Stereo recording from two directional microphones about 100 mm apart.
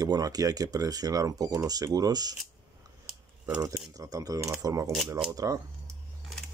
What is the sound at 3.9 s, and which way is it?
Speech, 35° right (ahead or behind).